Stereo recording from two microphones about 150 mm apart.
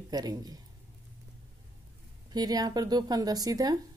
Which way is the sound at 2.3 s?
25° right (ahead or behind).